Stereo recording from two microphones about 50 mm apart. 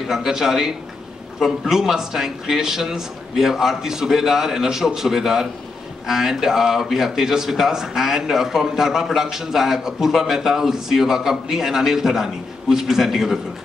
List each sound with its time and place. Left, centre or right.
0.0 s a man's voice: centre